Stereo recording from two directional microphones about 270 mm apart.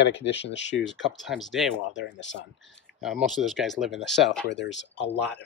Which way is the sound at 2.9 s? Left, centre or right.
Centre.